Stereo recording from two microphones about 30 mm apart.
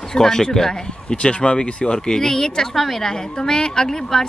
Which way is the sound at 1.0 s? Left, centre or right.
Left.